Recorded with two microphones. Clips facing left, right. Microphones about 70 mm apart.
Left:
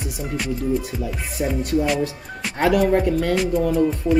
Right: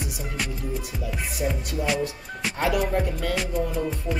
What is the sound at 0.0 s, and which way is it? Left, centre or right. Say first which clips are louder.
Music: left 4 dB; centre.